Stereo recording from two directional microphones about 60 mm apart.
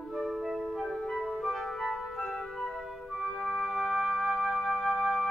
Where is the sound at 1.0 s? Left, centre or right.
Centre.